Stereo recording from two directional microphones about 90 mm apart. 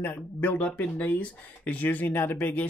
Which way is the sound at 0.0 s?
20° left (ahead or behind).